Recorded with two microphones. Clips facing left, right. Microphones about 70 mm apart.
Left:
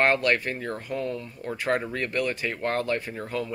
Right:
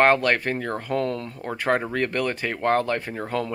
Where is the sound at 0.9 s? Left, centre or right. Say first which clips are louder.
Right 6 dB; right.